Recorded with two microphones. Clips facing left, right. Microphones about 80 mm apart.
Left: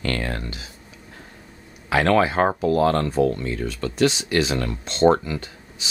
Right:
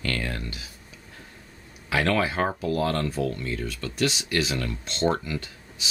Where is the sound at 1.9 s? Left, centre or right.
Left.